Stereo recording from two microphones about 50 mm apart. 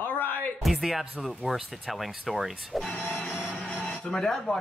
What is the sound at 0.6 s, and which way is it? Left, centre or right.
Speech, centre.